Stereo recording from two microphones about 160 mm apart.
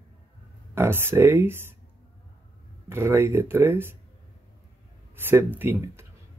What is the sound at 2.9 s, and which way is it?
Speech, 15° right (ahead or behind).